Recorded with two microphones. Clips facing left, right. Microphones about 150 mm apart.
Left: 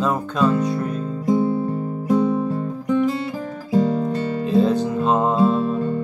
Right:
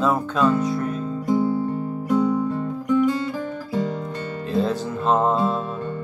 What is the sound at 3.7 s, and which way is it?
Music, 40° left (ahead or behind).